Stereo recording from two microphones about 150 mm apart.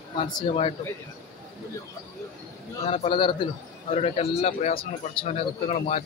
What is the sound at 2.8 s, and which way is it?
Speech, 40° left (ahead or behind).